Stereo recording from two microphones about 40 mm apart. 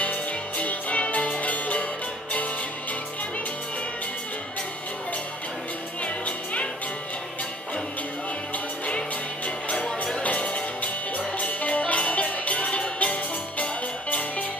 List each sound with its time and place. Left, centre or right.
0.0 s music: left
6.0 s music: left
9.8 s music: centre
10.2 s music: left